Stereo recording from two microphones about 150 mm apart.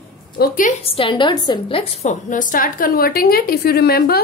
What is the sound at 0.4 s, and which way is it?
Speech, 65° left (ahead or behind).